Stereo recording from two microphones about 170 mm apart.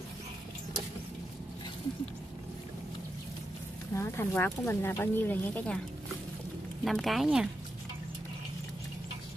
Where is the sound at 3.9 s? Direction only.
15° left (ahead or behind).